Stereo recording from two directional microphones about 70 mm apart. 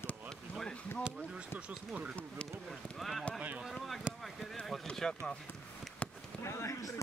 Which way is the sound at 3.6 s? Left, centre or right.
Centre.